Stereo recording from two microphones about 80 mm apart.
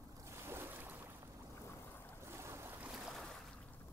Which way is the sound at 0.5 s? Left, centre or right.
Right.